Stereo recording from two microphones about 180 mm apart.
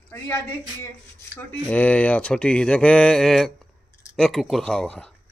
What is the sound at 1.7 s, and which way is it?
Speech, 5° left (ahead or behind).